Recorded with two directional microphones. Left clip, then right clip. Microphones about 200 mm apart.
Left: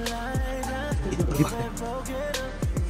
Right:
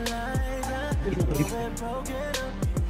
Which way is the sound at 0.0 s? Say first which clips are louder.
Even; centre (ahead or behind).